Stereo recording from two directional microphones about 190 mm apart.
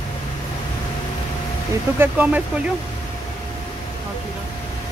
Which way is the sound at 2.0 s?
10° right (ahead or behind).